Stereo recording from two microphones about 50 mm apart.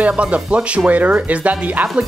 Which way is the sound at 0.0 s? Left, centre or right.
Right.